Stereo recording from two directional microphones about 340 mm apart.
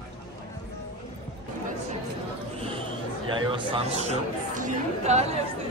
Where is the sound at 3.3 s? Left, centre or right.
Centre.